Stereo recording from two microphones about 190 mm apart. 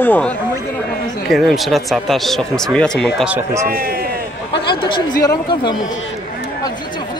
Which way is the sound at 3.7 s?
55° right (ahead or behind).